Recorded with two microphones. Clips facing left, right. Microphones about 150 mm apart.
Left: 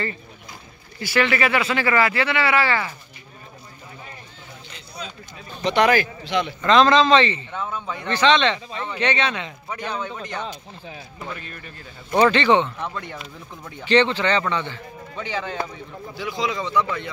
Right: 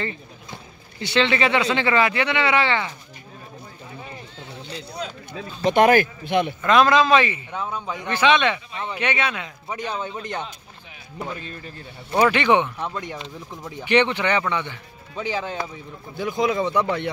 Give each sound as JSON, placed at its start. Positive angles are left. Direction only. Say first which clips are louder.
{"t": 0.0, "sound": "speech", "louder": "left 1 dB", "side_deg": -20}
{"t": 5.6, "sound": "speech", "louder": "right 2 dB", "side_deg": -50}
{"t": 6.6, "sound": "speech", "louder": "left 2 dB", "side_deg": -5}
{"t": 11.1, "sound": "speech", "louder": "right 6 dB", "side_deg": -25}
{"t": 12.1, "sound": "speech", "louder": "left 1 dB", "side_deg": -10}
{"t": 16.2, "sound": "speech", "louder": "right 4 dB", "side_deg": -50}